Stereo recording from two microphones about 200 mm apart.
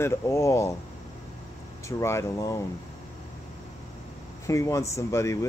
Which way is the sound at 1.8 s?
15° left (ahead or behind).